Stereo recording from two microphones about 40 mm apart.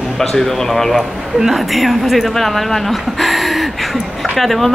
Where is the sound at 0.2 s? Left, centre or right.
Centre.